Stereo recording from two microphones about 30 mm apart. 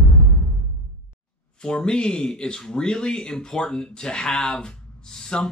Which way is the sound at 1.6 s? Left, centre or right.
Left.